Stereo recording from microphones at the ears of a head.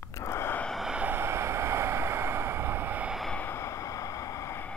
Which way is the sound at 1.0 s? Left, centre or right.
Right.